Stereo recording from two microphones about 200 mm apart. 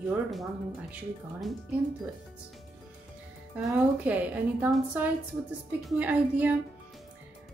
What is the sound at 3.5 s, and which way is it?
A woman's voice, 5° right (ahead or behind).